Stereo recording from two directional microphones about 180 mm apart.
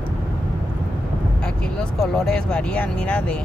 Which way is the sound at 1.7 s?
Centre (ahead or behind).